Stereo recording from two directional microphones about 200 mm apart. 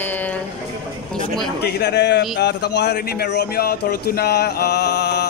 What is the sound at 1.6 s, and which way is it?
Speech, 55° left (ahead or behind).